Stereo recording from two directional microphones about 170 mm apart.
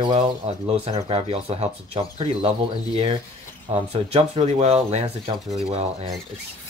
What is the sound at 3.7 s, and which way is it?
Speech, 35° right (ahead or behind).